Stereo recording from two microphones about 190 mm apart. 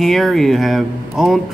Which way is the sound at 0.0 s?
Centre (ahead or behind).